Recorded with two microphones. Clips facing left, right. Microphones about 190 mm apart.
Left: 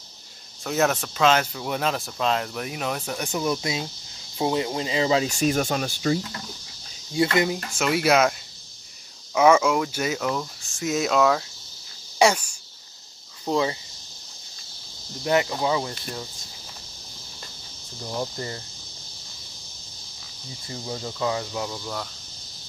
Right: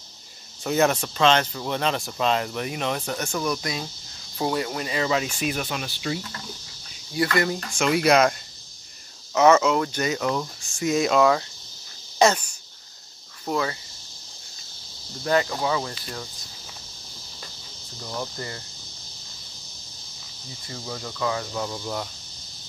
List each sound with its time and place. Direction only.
0.7 s speech: centre (ahead or behind)
3.2 s speech: 15° left (ahead or behind)
5.3 s speech: 45° left (ahead or behind)
7.2 s speech: 20° left (ahead or behind)
7.4 s speech: 5° left (ahead or behind)
12.2 s speech: 10° left (ahead or behind)
13.5 s speech: 20° left (ahead or behind)
15.3 s speech: 15° left (ahead or behind)
18.0 s speech: 20° left (ahead or behind)
20.6 s speech: 25° left (ahead or behind)
21.5 s speech: centre (ahead or behind)